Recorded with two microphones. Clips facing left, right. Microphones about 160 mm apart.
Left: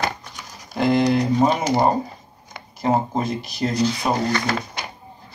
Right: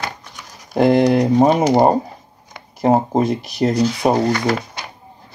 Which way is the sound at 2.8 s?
65° right (ahead or behind).